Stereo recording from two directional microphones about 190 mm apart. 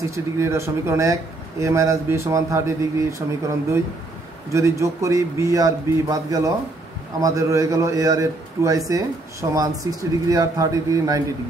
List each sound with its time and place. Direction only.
0.1 s a man's voice: 15° right (ahead or behind)